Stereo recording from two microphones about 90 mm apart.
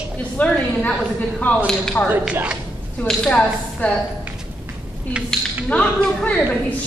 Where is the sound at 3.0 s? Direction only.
15° left (ahead or behind).